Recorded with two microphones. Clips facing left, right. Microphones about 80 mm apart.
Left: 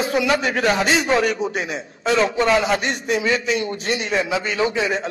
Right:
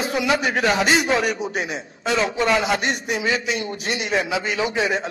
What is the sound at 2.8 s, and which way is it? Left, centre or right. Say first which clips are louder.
A man's voice: left 2 dB; centre.